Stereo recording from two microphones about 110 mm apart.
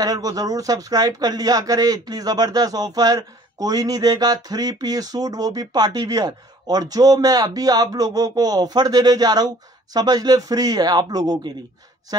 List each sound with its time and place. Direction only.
0.0 s speech: 35° right (ahead or behind)